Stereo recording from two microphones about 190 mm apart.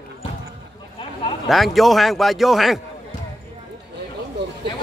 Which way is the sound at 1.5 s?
Centre (ahead or behind).